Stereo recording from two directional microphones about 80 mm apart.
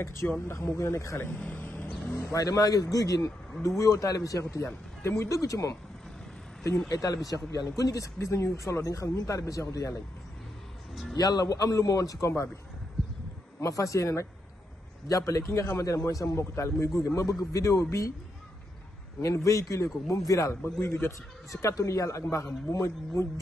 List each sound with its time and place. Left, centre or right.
0.0 s a man's voice: left
1.9 s vehicle: centre
2.3 s speech: left
4.6 s a man's voice: left
6.9 s speech: left
11.1 s speech: left
13.6 s a man's voice: left
19.2 s a man's voice: left
20.6 s a man's voice: left